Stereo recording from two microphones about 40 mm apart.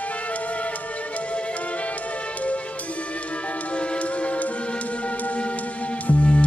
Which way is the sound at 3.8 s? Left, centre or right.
Left.